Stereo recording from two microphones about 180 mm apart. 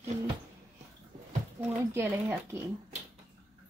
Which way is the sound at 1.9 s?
15° right (ahead or behind).